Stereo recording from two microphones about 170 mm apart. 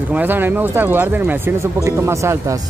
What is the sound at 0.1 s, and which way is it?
Speech, 10° right (ahead or behind).